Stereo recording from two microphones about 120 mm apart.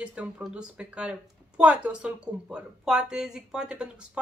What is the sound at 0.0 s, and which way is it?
Speech, 10° right (ahead or behind).